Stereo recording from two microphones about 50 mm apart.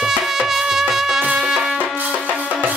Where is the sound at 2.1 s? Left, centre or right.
Right.